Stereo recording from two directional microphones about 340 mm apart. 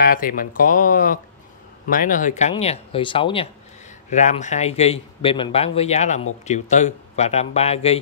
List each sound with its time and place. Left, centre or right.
0.0 s speech: left